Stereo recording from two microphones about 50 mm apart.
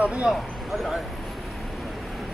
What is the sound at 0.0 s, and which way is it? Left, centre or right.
Speech, right.